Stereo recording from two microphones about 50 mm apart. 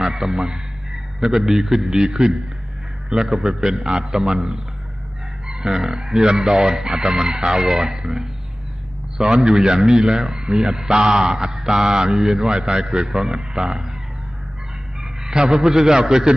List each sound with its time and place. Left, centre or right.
0.0 s a man's voice: centre
5.6 s speech: centre
9.3 s speech: centre
15.2 s speech: centre